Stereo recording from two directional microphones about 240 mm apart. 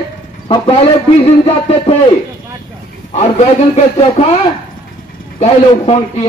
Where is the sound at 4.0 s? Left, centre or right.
Left.